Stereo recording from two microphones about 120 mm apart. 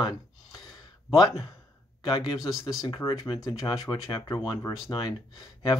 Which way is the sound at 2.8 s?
30° left (ahead or behind).